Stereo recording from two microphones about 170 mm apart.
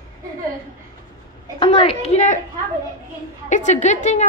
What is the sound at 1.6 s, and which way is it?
Speech, 30° left (ahead or behind).